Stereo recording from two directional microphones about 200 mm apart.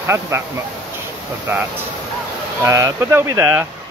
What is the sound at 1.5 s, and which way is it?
Speech, 10° right (ahead or behind).